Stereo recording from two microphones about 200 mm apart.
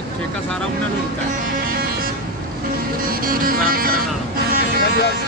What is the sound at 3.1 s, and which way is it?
Music, 45° right (ahead or behind).